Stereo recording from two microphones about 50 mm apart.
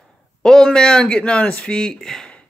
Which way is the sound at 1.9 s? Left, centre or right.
Centre.